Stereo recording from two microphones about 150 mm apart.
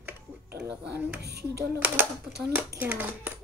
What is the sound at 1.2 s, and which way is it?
Speech, 90° right.